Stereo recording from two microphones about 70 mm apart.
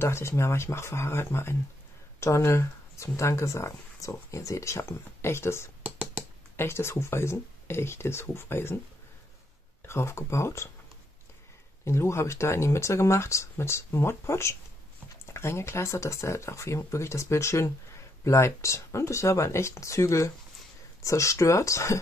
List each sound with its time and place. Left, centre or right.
0.0 s speech: left
9.8 s speech: left
11.8 s speech: left